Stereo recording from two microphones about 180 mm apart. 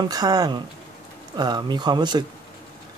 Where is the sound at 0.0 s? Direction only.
20° right (ahead or behind).